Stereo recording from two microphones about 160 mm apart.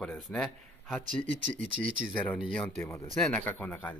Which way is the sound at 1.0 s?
50° right (ahead or behind).